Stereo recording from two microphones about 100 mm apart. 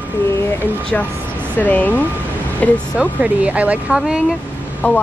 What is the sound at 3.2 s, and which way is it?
Speech, 15° right (ahead or behind).